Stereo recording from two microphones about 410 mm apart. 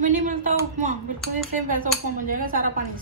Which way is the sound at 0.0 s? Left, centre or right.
Centre.